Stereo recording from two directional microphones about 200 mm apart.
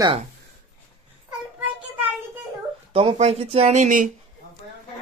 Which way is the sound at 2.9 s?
30° right (ahead or behind).